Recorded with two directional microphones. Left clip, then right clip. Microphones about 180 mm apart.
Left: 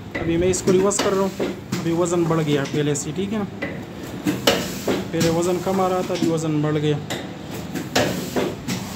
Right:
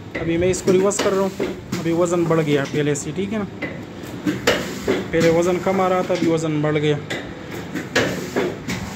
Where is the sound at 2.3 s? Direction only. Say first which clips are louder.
Right 3 dB; centre (ahead or behind).